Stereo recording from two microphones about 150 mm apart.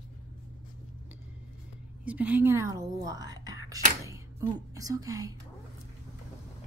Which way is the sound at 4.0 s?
20° right (ahead or behind).